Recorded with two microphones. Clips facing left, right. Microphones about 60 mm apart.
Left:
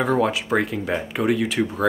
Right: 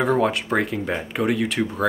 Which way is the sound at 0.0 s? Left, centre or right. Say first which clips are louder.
Even; centre.